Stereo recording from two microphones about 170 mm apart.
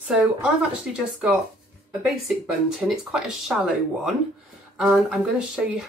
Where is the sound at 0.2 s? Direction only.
5° right (ahead or behind).